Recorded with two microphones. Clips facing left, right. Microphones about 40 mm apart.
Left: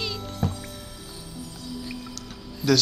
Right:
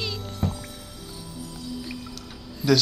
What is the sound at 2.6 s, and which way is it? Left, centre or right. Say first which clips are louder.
Speech: right 1 dB; centre.